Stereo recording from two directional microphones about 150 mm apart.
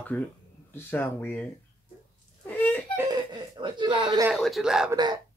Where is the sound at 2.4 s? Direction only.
10° left (ahead or behind).